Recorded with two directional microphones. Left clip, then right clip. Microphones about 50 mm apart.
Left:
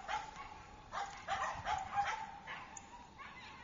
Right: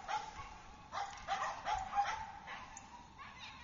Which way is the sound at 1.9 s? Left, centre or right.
Left.